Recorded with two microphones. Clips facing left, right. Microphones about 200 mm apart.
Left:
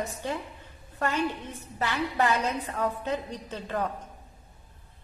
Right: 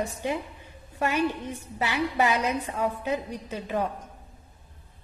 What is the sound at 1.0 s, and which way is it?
A woman's voice, 10° right (ahead or behind).